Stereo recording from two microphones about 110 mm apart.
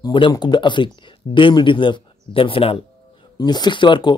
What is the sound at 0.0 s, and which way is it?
Speech, 45° left (ahead or behind).